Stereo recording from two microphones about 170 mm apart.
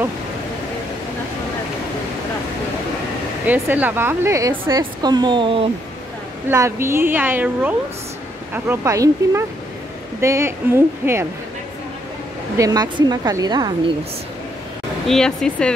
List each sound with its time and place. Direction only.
3.4 s a woman's voice: 10° right (ahead or behind); by 5.7 s 30° right (ahead or behind)
6.5 s a woman's voice: 15° right (ahead or behind)
12.5 s a woman's voice: 20° right (ahead or behind)
15.0 s speech: 5° left (ahead or behind)